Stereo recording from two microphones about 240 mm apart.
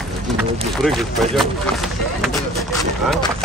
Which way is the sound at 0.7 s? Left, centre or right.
Centre.